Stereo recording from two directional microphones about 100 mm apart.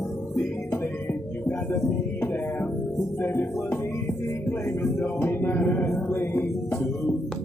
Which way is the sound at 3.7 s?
25° left (ahead or behind).